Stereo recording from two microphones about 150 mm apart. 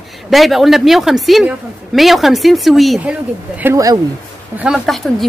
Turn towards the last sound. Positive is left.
turn(degrees=0)  # may be behind; listen again after turning